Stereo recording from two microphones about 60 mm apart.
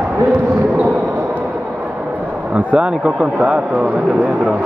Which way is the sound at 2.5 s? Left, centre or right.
Centre.